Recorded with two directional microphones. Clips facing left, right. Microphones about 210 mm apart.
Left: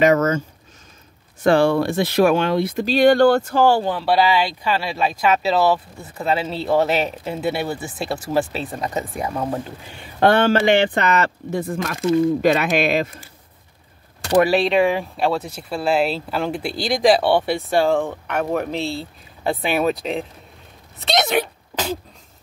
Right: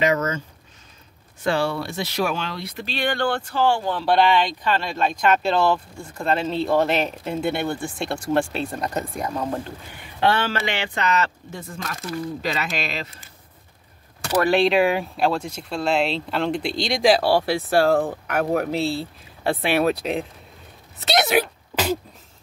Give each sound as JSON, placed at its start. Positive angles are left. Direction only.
{"t": 0.0, "sound": "speech", "side_deg": 50}
{"t": 1.4, "sound": "speech", "side_deg": 50}
{"t": 4.0, "sound": "speech", "side_deg": 5}
{"t": 10.2, "sound": "speech", "side_deg": 50}
{"t": 14.5, "sound": "speech", "side_deg": 0}
{"t": 21.0, "sound": "a sound", "side_deg": -5}